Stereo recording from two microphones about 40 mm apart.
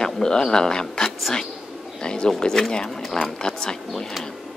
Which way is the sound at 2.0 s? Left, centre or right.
Left.